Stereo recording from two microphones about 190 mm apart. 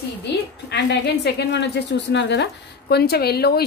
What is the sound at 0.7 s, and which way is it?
A woman's voice, 60° left (ahead or behind).